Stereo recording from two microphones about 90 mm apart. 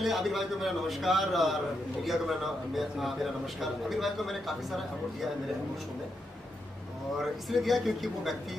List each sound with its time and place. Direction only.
0.0 s a man's voice: centre (ahead or behind)
7.2 s a man's voice: centre (ahead or behind)